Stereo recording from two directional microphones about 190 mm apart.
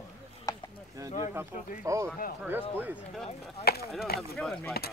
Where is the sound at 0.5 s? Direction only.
20° left (ahead or behind).